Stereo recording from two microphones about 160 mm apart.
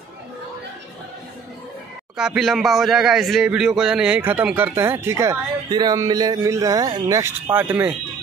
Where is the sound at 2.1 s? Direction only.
5° right (ahead or behind).